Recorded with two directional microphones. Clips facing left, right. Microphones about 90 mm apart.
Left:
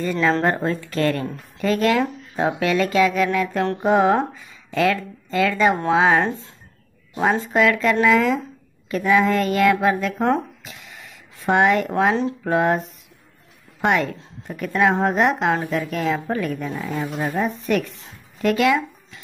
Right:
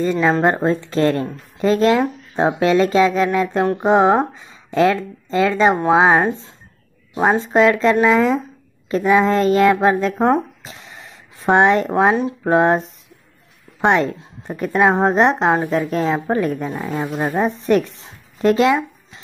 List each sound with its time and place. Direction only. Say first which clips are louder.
0.0 s a woman's voice: right 4 dB; 20° right (ahead or behind)
10.3 s a sound: right 4 dB; 30° right (ahead or behind)
12.4 s a woman's voice: right 6 dB; 30° right (ahead or behind)